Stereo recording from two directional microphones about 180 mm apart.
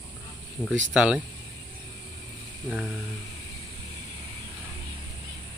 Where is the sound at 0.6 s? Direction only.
25° left (ahead or behind).